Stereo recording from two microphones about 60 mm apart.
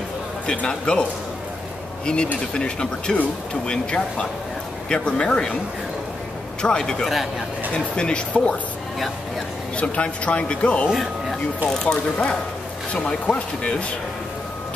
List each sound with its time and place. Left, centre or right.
0.5 s speech: centre
2.1 s speech: centre
6.6 s speech: centre
7.1 s speech: centre
7.7 s speech: centre
9.8 s speech: left
10.9 s speech: centre
11.7 s speech: centre